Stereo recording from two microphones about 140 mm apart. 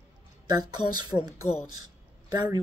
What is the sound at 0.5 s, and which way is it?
Speech, 30° right (ahead or behind).